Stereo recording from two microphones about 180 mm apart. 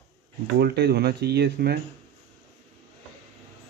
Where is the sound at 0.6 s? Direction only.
65° right (ahead or behind).